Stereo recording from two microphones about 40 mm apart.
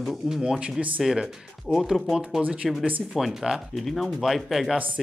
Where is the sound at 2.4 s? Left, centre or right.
Right.